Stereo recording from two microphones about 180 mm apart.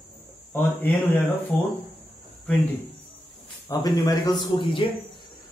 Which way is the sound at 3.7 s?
20° left (ahead or behind).